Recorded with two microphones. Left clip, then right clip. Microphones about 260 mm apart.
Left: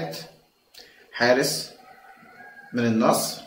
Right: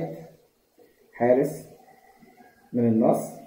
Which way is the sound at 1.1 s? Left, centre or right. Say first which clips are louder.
Left 1 dB; left.